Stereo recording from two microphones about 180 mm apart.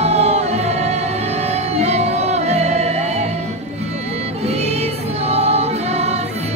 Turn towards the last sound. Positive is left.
turn(degrees=-35)  # may be behind; listen again after turning